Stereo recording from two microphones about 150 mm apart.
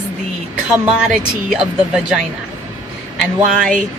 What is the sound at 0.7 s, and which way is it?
A woman's voice, 5° right (ahead or behind).